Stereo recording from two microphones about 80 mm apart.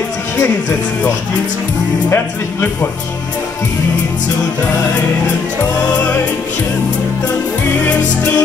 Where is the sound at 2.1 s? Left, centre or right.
Left.